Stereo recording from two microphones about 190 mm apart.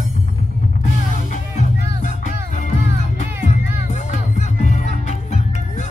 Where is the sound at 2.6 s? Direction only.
40° left (ahead or behind).